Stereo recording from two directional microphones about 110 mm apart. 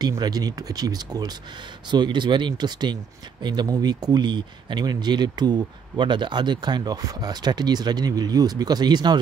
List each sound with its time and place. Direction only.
0.2 s speech: 35° right (ahead or behind)